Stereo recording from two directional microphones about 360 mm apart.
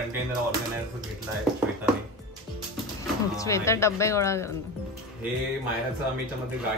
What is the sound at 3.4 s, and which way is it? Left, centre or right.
A woman's voice, centre.